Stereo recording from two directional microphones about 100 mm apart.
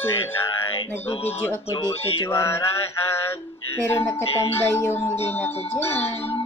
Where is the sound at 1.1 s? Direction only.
20° left (ahead or behind).